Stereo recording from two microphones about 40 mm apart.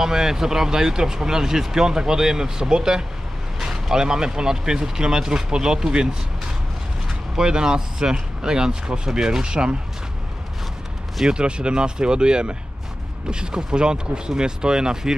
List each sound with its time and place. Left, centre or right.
0.0 s speech: centre
11.2 s speech: right